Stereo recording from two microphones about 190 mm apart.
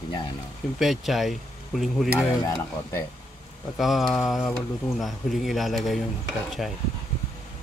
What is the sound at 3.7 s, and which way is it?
Speech, centre (ahead or behind).